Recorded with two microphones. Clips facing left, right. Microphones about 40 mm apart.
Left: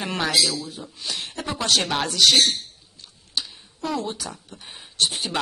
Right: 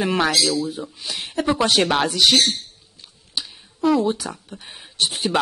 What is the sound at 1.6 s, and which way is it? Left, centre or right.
Speech, centre.